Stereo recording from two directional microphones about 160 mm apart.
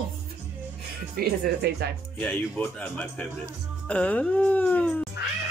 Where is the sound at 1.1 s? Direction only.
75° right (ahead or behind).